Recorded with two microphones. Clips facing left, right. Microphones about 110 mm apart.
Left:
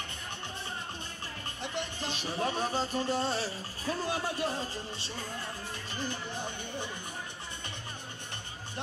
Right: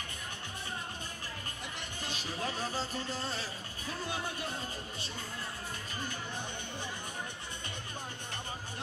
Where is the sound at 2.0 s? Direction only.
25° left (ahead or behind).